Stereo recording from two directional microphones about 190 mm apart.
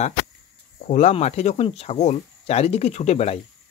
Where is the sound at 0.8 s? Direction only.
40° left (ahead or behind).